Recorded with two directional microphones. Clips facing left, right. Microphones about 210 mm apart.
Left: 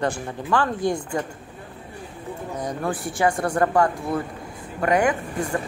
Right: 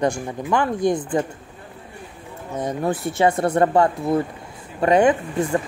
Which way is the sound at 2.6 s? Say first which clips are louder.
Right 5 dB; 25° right (ahead or behind).